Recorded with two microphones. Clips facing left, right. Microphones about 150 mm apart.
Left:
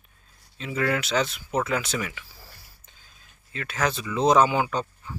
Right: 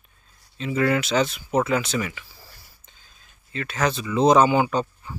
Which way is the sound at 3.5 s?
5° left (ahead or behind).